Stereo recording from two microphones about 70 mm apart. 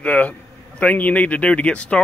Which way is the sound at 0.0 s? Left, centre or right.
Centre.